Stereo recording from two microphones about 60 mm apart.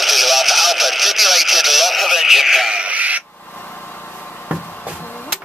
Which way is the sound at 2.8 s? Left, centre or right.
Right.